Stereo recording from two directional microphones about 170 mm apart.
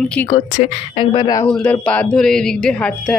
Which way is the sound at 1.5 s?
5° left (ahead or behind).